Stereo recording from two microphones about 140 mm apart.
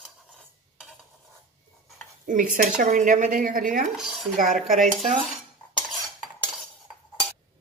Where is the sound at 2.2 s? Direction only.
70° right (ahead or behind).